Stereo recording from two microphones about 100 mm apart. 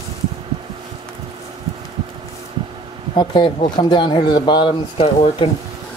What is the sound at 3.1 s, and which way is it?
Speech, 60° left (ahead or behind).